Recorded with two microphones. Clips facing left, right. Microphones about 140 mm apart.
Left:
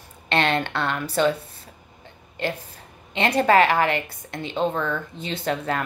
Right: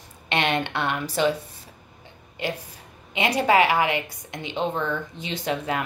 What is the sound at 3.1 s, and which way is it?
A woman's voice, 10° right (ahead or behind).